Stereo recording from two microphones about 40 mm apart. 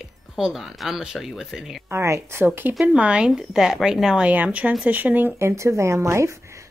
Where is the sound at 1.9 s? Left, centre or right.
Right.